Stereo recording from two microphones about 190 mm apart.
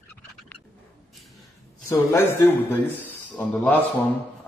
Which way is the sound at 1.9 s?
15° left (ahead or behind).